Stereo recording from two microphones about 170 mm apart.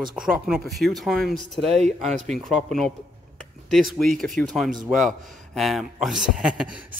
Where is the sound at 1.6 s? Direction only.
40° right (ahead or behind).